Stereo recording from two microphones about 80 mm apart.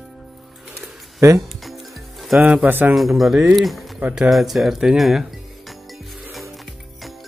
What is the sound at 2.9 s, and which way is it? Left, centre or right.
Speech, centre.